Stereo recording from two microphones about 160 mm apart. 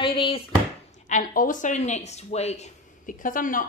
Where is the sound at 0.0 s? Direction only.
30° left (ahead or behind).